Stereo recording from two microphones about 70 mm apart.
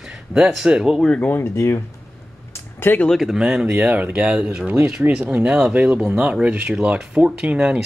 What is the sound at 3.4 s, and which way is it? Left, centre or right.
Speech, centre.